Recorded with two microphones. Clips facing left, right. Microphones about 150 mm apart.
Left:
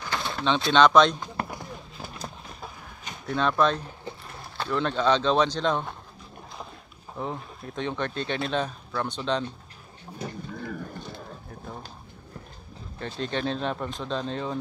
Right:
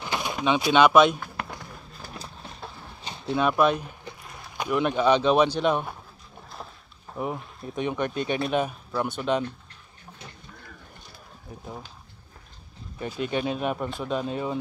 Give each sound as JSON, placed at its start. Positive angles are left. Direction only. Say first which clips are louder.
{"t": 0.0, "sound": "speech", "louder": "right 2 dB", "side_deg": -15}
{"t": 3.0, "sound": "a sound", "louder": "right 3 dB", "side_deg": -30}
{"t": 3.3, "sound": "speech", "louder": "right 2 dB", "side_deg": -10}
{"t": 7.2, "sound": "speech", "louder": "right 2 dB", "side_deg": -10}
{"t": 13.0, "sound": "speech", "louder": "right 2 dB", "side_deg": -10}